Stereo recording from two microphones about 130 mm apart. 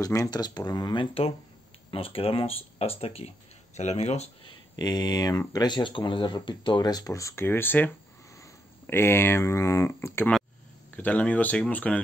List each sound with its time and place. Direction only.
0.0 s speech: 25° left (ahead or behind); by 4.3 s 55° left (ahead or behind)
4.5 s speech: 30° left (ahead or behind); by 12.0 s 10° left (ahead or behind)